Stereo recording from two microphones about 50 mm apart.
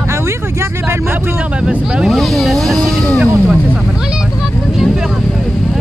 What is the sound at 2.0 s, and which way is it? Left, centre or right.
Vehicle, centre.